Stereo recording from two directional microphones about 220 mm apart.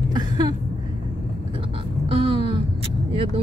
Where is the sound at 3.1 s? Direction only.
25° right (ahead or behind).